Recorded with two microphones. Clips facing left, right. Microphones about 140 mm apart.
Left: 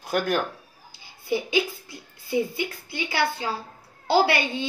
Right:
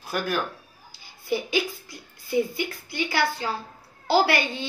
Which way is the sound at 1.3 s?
20° left (ahead or behind).